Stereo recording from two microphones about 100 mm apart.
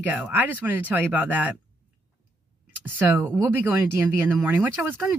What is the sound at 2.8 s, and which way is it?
Speech, 20° right (ahead or behind).